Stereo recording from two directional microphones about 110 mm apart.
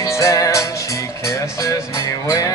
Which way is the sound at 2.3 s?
30° left (ahead or behind).